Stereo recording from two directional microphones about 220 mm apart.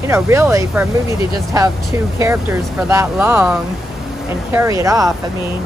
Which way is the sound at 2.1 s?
10° right (ahead or behind).